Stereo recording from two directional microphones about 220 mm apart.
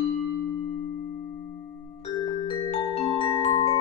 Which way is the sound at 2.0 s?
25° left (ahead or behind).